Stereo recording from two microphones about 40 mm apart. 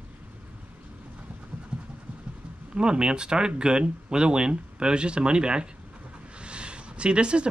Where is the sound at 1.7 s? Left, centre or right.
Right.